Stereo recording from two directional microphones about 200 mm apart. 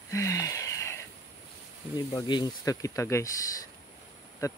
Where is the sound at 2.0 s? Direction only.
25° left (ahead or behind).